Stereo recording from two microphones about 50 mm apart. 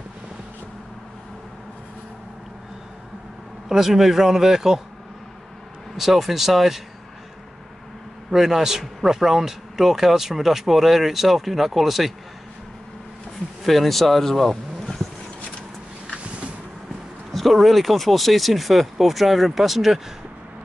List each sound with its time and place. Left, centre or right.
3.6 s a man's voice: centre
5.9 s speech: centre
8.3 s a man's voice: centre
13.7 s speech: centre
17.3 s speech: centre